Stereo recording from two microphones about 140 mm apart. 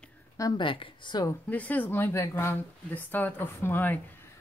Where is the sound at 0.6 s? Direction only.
35° left (ahead or behind).